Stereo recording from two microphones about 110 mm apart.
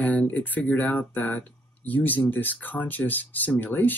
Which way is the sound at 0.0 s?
15° left (ahead or behind).